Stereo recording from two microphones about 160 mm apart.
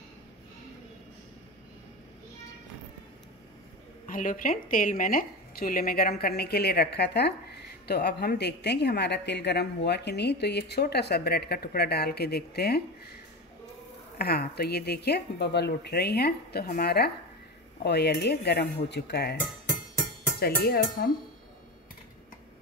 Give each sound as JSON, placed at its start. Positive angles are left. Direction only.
{"t": 4.1, "sound": "a woman's voice", "side_deg": 55}
{"t": 14.1, "sound": "speech", "side_deg": 75}
{"t": 17.8, "sound": "a woman's voice", "side_deg": 90}
{"t": 20.3, "sound": "speech", "side_deg": 70}